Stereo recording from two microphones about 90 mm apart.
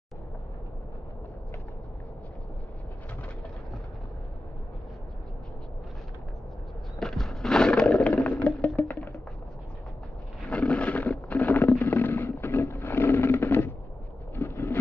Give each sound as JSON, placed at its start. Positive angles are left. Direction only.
{"t": 7.0, "sound": "roaring cats", "side_deg": 5}
{"t": 8.2, "sound": "music", "side_deg": 15}
{"t": 10.4, "sound": "a sound", "side_deg": 15}